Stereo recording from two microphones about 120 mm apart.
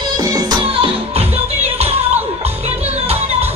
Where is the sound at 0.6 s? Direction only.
50° right (ahead or behind).